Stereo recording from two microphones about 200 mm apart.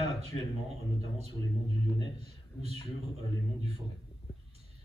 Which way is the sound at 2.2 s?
30° right (ahead or behind).